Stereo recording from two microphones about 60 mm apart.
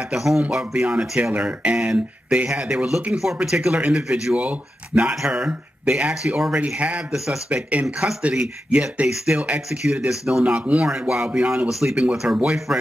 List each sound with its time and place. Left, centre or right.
0.1 s speech: centre; by 5.1 s right
5.2 s speech: centre
10.4 s speech: right
10.9 s speech: centre